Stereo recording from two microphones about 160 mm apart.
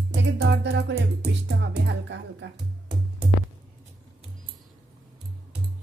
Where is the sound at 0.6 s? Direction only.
90° right.